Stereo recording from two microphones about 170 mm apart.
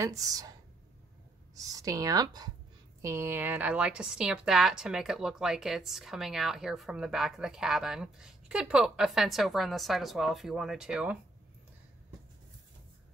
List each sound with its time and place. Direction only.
0.0 s a woman's voice: 20° right (ahead or behind)
1.5 s a woman's voice: 20° right (ahead or behind)